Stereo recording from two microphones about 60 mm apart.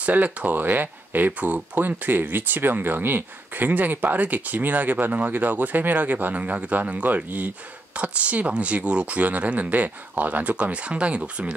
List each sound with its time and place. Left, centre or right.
0.0 s speech: right